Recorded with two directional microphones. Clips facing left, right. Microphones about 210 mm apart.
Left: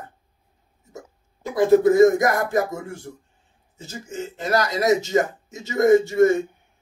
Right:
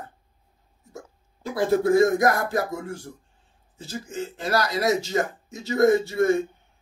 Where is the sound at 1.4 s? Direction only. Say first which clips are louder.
Left 6 dB; 20° left (ahead or behind).